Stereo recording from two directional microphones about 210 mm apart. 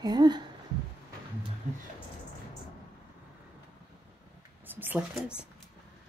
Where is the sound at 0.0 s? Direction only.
20° right (ahead or behind).